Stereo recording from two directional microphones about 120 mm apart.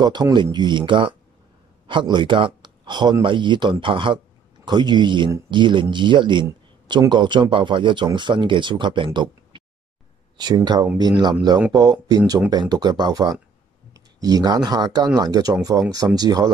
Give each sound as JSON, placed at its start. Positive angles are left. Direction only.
{"t": 0.0, "sound": "speech", "side_deg": -35}